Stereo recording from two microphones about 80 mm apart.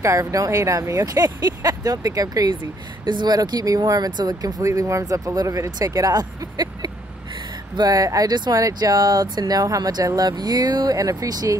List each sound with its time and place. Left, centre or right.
0.0 s speech: right
3.1 s speech: right
3.3 s speech: right
5.6 s speech: right
11.0 s speech: right